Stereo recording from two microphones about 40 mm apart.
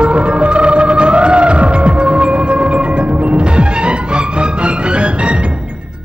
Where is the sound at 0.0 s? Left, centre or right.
Right.